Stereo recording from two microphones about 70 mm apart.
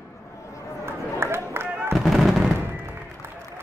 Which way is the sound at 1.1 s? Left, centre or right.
Right.